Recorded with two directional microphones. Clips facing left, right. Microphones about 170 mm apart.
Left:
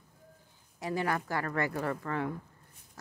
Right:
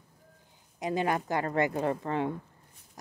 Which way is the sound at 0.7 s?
20° right (ahead or behind).